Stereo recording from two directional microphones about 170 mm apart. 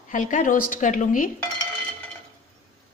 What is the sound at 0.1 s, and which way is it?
Speech, 50° left (ahead or behind).